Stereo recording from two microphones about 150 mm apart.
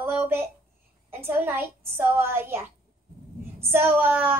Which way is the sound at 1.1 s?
15° right (ahead or behind).